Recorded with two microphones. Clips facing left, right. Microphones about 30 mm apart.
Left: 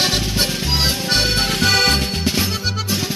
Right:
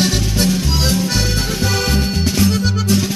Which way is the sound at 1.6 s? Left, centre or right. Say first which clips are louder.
Left 4 dB; left.